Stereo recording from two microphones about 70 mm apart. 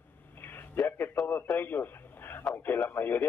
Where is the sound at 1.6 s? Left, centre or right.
Left.